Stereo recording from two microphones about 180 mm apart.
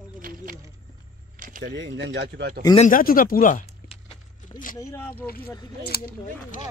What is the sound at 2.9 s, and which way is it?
Speech, 50° left (ahead or behind).